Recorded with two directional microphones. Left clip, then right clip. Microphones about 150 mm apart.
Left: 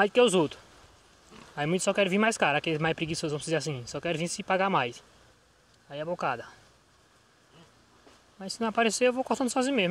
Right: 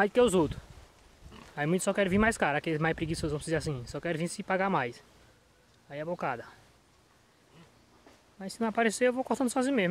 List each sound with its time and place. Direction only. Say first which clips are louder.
0.0 s speech: left 2 dB; 10° right (ahead or behind)
8.4 s speech: left 2 dB; 10° right (ahead or behind)